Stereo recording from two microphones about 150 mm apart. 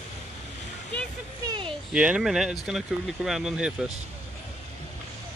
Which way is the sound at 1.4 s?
35° right (ahead or behind).